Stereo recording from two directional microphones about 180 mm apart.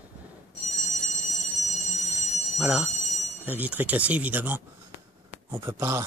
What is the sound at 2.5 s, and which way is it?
Speech, 5° right (ahead or behind).